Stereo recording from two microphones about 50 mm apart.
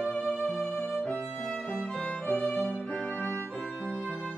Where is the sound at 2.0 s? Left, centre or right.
Left.